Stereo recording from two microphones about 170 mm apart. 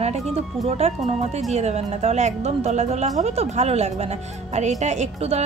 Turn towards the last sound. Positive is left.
turn(degrees=-40)  # may be behind; listen again after turning